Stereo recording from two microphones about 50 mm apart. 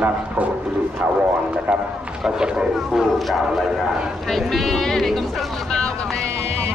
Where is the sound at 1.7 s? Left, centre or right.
Centre.